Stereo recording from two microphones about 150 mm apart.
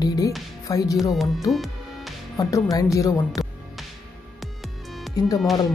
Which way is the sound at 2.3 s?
25° left (ahead or behind).